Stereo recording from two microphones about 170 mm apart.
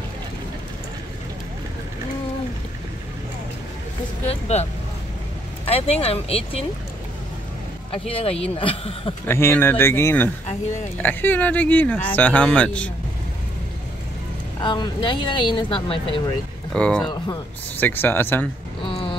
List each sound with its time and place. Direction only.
5.7 s speech: 35° left (ahead or behind)
7.9 s speech: 35° left (ahead or behind)
9.3 s speech: 15° left (ahead or behind)
14.6 s speech: 30° left (ahead or behind)
16.7 s speech: 5° left (ahead or behind)
18.8 s a sound: 30° left (ahead or behind)